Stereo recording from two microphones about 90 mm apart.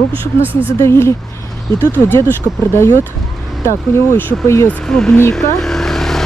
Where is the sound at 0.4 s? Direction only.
20° right (ahead or behind).